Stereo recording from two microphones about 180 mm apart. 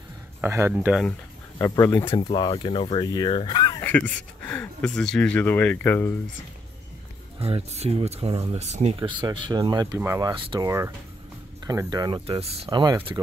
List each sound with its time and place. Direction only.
0.4 s speech: 15° right (ahead or behind)
1.6 s speech: 15° left (ahead or behind)
4.5 s speech: 5° left (ahead or behind)
7.3 s speech: 35° right (ahead or behind)